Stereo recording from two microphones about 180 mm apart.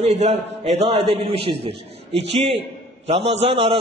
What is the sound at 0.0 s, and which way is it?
A man's voice, 35° right (ahead or behind).